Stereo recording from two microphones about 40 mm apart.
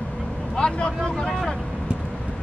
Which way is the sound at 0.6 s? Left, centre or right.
Left.